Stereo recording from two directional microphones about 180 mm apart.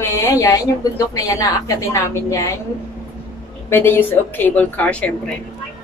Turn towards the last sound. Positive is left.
turn(degrees=10)  # may be behind; listen again after turning